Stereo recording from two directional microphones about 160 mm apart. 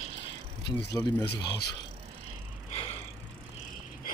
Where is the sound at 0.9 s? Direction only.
25° left (ahead or behind).